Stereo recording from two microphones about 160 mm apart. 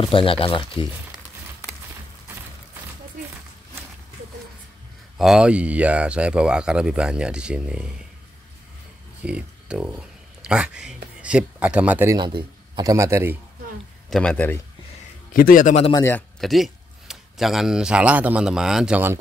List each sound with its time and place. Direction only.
0.0 s speech: 35° left (ahead or behind)
5.1 s speech: centre (ahead or behind)
9.2 s a man's voice: 5° right (ahead or behind)
14.1 s a man's voice: 10° left (ahead or behind)
15.3 s a man's voice: 60° left (ahead or behind)
15.9 s a man's voice: 15° left (ahead or behind)
16.3 s a man's voice: centre (ahead or behind)